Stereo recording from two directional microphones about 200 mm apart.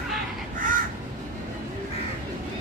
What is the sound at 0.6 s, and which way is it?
Crow, 40° right (ahead or behind).